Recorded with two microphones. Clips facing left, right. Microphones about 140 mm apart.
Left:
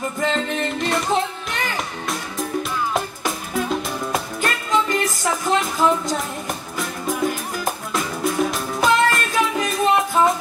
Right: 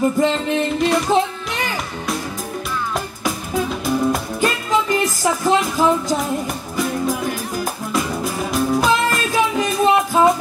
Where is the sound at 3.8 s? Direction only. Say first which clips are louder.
Right 6 dB; centre (ahead or behind).